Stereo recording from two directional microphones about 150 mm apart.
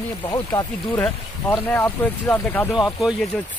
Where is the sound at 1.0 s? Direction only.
10° left (ahead or behind).